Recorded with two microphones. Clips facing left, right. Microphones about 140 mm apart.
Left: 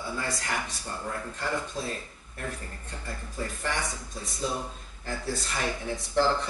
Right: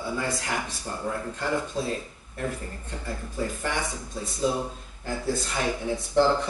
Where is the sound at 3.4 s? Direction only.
5° right (ahead or behind).